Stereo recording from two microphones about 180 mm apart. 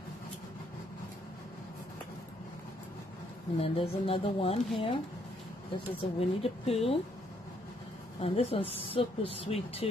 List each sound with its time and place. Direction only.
3.5 s speech: 30° left (ahead or behind)
6.1 s speech: 35° left (ahead or behind)
8.2 s speech: 35° left (ahead or behind)